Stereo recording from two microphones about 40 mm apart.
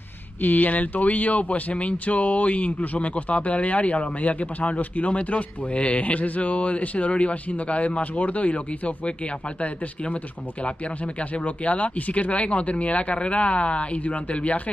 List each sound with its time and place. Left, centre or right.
0.4 s speech: left
11.1 s speech: left